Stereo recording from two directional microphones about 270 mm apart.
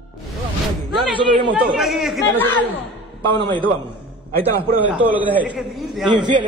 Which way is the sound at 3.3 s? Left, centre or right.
Centre.